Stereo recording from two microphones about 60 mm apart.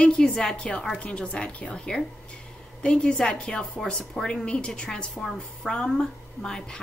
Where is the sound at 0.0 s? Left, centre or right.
Centre.